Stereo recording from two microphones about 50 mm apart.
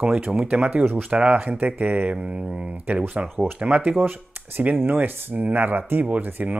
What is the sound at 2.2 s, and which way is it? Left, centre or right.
Speech, centre.